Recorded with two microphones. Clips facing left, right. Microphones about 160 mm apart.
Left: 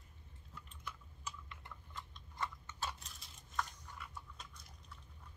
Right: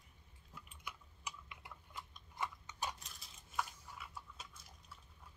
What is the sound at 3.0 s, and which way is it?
Chewing, centre (ahead or behind).